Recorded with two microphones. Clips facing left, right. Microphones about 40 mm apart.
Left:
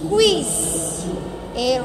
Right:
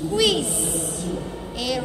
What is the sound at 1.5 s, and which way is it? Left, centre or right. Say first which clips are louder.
Speech: left 7 dB; right.